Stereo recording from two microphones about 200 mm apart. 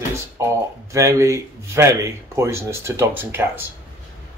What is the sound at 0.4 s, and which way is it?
Speech, 15° right (ahead or behind).